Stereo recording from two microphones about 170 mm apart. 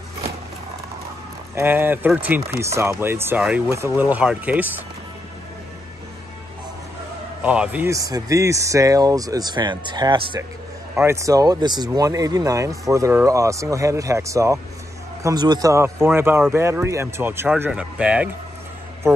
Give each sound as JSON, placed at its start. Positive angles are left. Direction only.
{"t": 1.5, "sound": "speech", "side_deg": -15}
{"t": 7.4, "sound": "speech", "side_deg": -5}
{"t": 11.0, "sound": "speech", "side_deg": -15}